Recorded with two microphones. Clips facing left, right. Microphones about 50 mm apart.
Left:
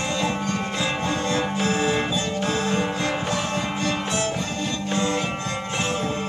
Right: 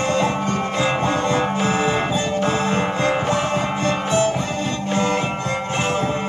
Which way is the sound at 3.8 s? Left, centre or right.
Right.